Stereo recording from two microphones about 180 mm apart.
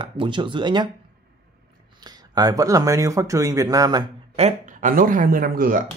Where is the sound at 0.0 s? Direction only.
25° right (ahead or behind).